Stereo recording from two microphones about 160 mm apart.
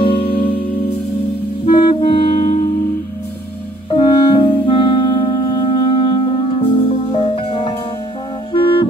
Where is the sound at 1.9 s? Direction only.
35° left (ahead or behind).